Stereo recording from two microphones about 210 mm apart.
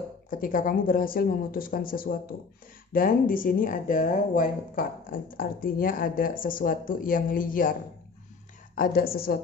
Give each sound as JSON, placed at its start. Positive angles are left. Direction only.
{"t": 0.3, "sound": "speech", "side_deg": 40}
{"t": 8.7, "sound": "a woman's voice", "side_deg": 45}